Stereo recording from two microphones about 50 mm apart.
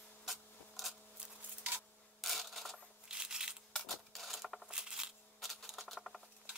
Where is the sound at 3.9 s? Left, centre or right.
Centre.